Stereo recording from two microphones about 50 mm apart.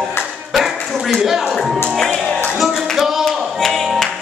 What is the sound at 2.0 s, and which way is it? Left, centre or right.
Music, centre.